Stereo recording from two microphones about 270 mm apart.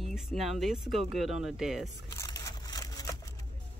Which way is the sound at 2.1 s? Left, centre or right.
Centre.